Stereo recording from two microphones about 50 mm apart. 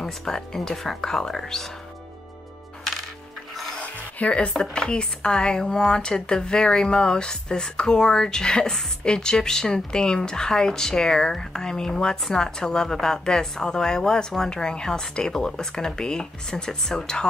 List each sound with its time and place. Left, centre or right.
0.2 s speech: centre
3.8 s music: left
4.6 s speech: centre